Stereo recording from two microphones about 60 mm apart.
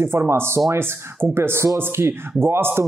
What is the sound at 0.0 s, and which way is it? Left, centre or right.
Speech, right.